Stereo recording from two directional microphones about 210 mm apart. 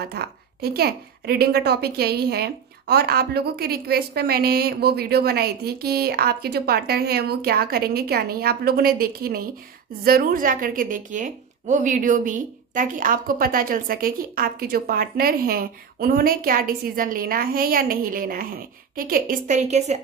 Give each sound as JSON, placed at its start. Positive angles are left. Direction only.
{"t": 0.0, "sound": "a woman's voice", "side_deg": -50}